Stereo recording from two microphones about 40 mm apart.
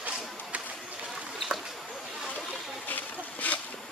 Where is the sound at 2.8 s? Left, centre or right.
Left.